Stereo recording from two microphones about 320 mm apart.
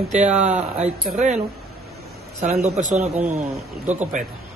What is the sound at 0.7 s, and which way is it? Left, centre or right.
Speech, right.